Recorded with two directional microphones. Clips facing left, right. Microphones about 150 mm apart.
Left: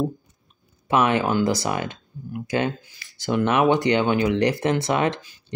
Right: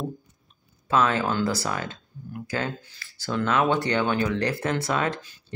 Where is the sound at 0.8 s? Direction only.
20° left (ahead or behind).